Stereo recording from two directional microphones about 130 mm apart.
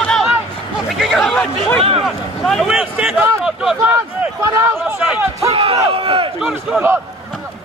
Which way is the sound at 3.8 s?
25° right (ahead or behind).